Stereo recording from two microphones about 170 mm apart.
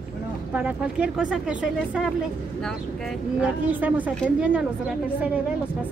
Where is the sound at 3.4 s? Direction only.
10° right (ahead or behind).